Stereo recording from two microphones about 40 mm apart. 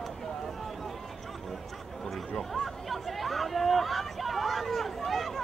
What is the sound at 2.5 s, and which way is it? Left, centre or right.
Speech, centre.